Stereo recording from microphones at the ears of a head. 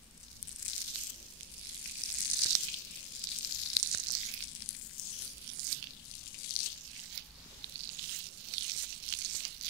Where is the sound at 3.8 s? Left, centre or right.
Right.